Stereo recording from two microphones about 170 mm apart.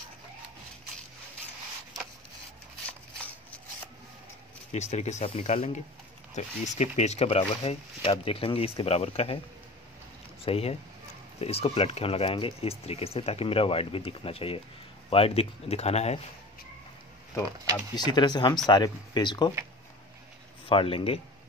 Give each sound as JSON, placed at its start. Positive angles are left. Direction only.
{"t": 4.7, "sound": "speech", "side_deg": 40}
{"t": 10.4, "sound": "speech", "side_deg": 35}
{"t": 17.9, "sound": "speech", "side_deg": 25}
{"t": 20.6, "sound": "speech", "side_deg": 30}